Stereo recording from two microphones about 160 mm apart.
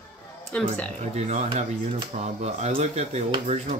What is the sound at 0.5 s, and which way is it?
Speech, 5° left (ahead or behind).